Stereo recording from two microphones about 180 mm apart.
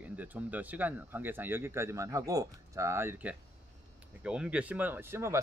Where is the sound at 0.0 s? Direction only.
10° right (ahead or behind).